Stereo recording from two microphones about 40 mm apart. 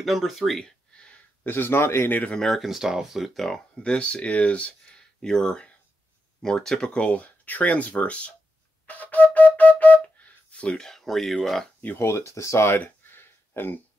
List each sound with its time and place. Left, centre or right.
0.0 s speech: centre
1.4 s speech: left
2.0 s speech: left
2.5 s speech: centre
3.3 s speech: centre
3.8 s speech: left
5.2 s speech: centre
7.1 s speech: left
8.8 s flute: left
10.7 s speech: centre
12.0 s speech: left
12.7 s a sound: left